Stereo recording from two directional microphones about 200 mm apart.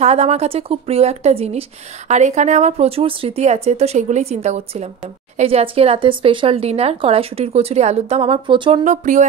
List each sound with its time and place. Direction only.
0.0 s a woman's voice: 30° right (ahead or behind)
8.8 s a woman's voice: 40° right (ahead or behind)